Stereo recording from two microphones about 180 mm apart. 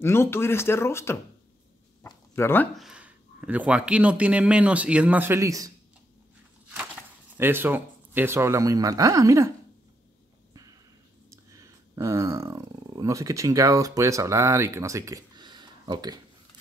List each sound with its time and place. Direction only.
0.0 s speech: 15° left (ahead or behind)
2.0 s a sound: 15° left (ahead or behind)
2.7 s a man's voice: 5° right (ahead or behind)
7.3 s a man's voice: 10° right (ahead or behind)
11.2 s speech: 15° right (ahead or behind)